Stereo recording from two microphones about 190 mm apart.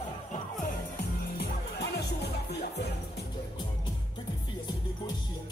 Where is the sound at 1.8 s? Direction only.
60° left (ahead or behind).